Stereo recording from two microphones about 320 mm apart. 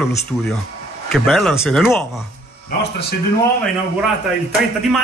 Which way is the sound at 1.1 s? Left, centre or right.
Centre.